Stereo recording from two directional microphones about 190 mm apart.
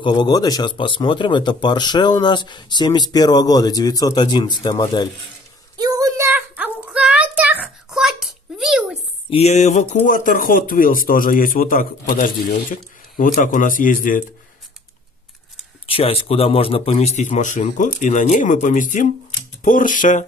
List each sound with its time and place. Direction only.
0.0 s speech: 25° left (ahead or behind)
5.8 s a sound: 20° right (ahead or behind); by 8.9 s 5° right (ahead or behind)
9.3 s speech: 35° left (ahead or behind)
15.9 s a man's voice: 30° left (ahead or behind)